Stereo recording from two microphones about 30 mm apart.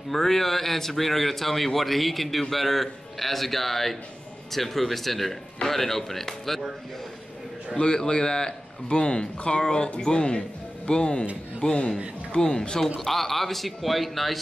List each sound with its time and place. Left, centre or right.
0.1 s a man's voice: centre
7.7 s speech: left
12.4 s speech: left
12.8 s a man's voice: centre